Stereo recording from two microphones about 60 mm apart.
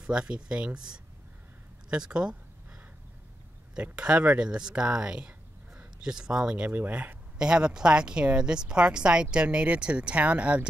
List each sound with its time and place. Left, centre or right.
0.0 s speech: centre
3.7 s speech: centre